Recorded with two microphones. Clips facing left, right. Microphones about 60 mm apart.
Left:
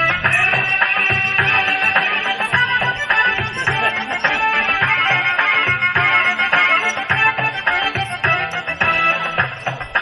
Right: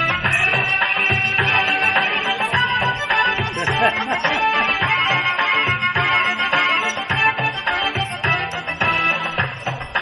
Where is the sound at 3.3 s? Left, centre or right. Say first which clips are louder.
Left 1 dB; left.